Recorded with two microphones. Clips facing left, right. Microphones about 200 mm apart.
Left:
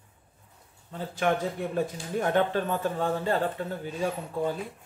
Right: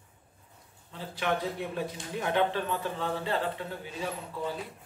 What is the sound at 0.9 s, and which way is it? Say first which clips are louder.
Speech: left 4 dB; 45° left (ahead or behind).